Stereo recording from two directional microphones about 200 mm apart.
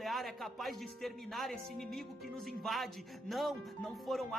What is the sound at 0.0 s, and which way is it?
Speech, centre (ahead or behind).